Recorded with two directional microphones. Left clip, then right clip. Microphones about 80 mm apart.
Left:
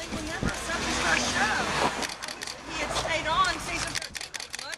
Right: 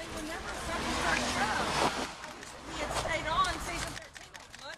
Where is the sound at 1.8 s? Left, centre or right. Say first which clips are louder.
Left 3 dB; right.